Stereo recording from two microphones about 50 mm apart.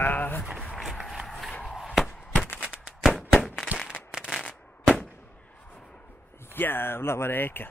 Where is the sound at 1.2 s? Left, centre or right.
Centre.